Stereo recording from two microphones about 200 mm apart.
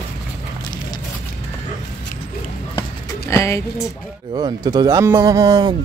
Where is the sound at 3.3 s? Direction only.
15° left (ahead or behind).